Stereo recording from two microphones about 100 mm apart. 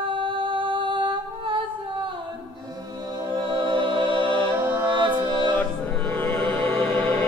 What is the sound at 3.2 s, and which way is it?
Music, 50° right (ahead or behind).